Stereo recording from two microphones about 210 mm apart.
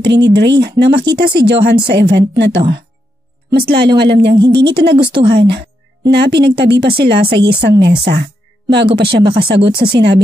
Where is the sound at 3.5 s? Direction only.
50° right (ahead or behind).